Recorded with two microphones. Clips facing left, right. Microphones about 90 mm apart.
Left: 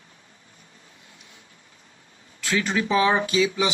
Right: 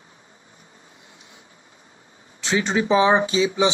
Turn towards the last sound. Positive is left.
turn(degrees=-25)  # may be behind; listen again after turning